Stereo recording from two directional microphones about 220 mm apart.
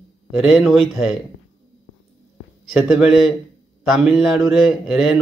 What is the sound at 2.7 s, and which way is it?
Speech, centre (ahead or behind).